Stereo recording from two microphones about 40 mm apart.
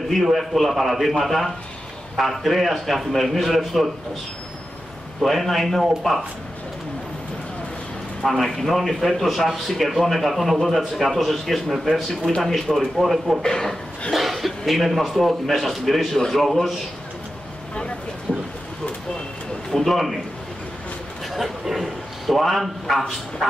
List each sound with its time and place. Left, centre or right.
0.1 s a man's voice: centre
5.2 s a man's voice: centre
8.2 s a man's voice: centre
12.9 s a man's voice: centre
13.4 s speech: centre
14.1 s a man's voice: centre
19.7 s a man's voice: centre
21.3 s a man's voice: centre